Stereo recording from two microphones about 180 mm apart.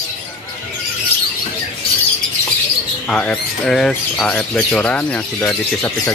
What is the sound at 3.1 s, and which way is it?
Speech, 5° left (ahead or behind).